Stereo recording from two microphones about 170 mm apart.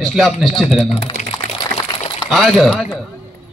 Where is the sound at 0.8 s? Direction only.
40° left (ahead or behind).